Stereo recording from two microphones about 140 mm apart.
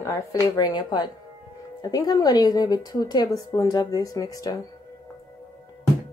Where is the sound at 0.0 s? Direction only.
20° left (ahead or behind).